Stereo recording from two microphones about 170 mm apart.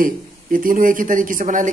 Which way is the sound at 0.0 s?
55° right (ahead or behind).